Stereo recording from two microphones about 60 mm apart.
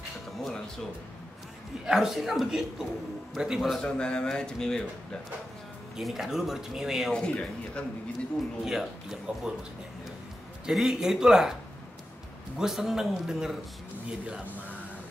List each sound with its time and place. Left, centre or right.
1.9 s a man's voice: centre
3.8 s speech: centre
5.9 s speech: centre
7.1 s speech: centre
8.6 s speech: centre
10.7 s speech: centre
12.5 s speech: centre